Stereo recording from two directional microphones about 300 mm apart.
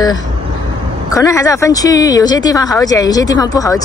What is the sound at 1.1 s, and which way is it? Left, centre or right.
Speech, centre.